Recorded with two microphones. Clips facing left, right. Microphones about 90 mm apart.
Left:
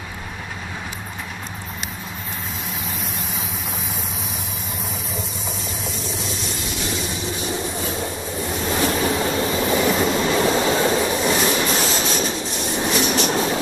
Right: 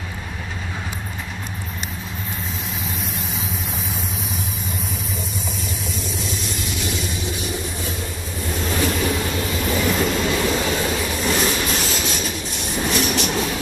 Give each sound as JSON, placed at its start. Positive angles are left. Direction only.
{"t": 6.5, "sound": "vehicle", "side_deg": 30}
{"t": 8.6, "sound": "train", "side_deg": 30}